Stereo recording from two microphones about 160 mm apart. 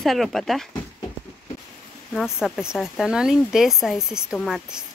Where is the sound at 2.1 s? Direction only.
5° left (ahead or behind).